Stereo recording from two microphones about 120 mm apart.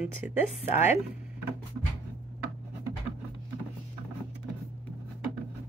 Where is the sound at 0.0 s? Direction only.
15° right (ahead or behind).